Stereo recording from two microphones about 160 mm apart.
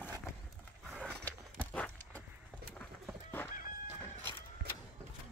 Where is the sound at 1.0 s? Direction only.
5° left (ahead or behind).